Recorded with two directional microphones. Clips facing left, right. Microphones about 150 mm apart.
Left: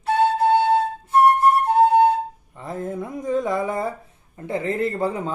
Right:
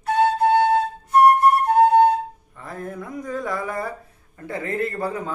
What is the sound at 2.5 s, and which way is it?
A man's voice, 20° left (ahead or behind).